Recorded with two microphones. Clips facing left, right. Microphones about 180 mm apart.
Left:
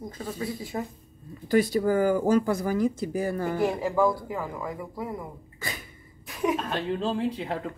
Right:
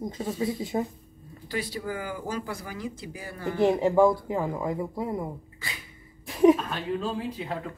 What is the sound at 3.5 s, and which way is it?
Speech, 25° right (ahead or behind).